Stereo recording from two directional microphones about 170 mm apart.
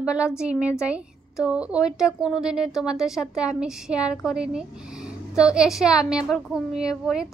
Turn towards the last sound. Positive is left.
turn(degrees=-5)  # may be behind; listen again after turning